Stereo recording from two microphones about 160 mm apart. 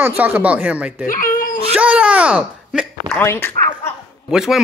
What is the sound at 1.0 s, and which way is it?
Baby cry, 60° left (ahead or behind).